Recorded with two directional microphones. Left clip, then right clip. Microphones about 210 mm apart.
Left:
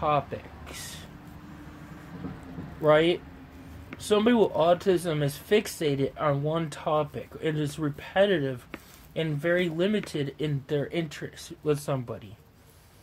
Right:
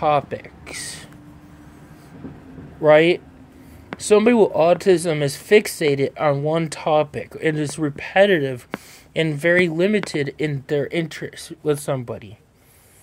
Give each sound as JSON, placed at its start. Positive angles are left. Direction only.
{"t": 0.0, "sound": "speech", "side_deg": -25}
{"t": 2.8, "sound": "speech", "side_deg": -25}